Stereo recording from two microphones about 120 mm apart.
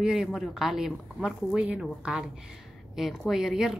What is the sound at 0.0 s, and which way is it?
A woman's voice, 5° right (ahead or behind).